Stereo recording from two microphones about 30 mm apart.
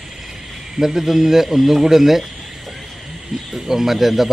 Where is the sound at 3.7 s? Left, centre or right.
Centre.